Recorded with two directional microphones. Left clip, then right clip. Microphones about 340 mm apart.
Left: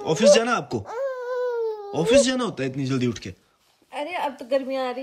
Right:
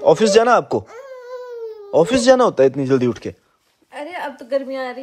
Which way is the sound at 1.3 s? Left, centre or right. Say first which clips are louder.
Left 3 dB; left.